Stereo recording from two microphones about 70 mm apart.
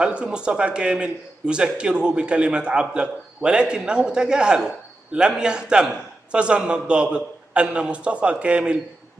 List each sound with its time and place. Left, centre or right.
0.0 s a man's voice: centre